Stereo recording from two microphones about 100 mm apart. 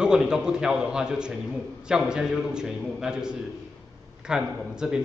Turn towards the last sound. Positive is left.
turn(degrees=-10)  # may be behind; listen again after turning